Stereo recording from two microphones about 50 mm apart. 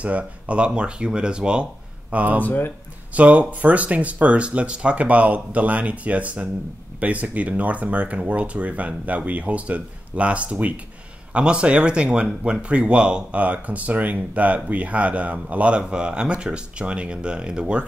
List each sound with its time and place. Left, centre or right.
0.0 s speech: right
2.4 s speech: left
3.2 s speech: right